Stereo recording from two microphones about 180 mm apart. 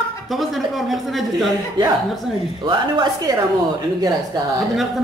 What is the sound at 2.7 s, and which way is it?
Speech, 25° right (ahead or behind).